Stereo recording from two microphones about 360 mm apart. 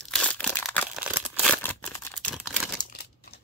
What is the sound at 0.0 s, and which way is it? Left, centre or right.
Crumpling, centre.